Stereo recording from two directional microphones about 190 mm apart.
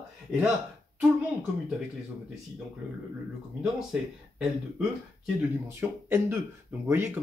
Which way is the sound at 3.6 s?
Centre (ahead or behind).